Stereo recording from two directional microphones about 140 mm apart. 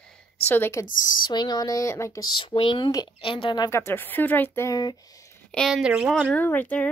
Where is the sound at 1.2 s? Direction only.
30° left (ahead or behind).